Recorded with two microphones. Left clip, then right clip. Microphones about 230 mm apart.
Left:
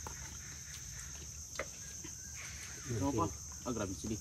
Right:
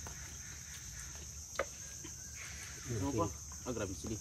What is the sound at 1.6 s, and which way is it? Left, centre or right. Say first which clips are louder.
Cricket: right 4 dB; centre.